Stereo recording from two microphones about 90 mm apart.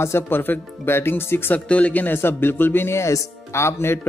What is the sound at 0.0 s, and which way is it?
Speech, 25° left (ahead or behind).